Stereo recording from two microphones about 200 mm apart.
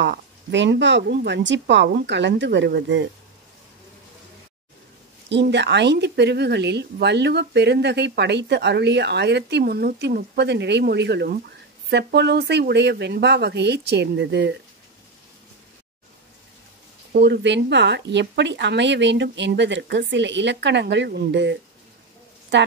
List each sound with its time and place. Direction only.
0.0 s speech: 60° right (ahead or behind)
5.3 s speech: 60° right (ahead or behind)
17.1 s a woman's voice: 60° right (ahead or behind)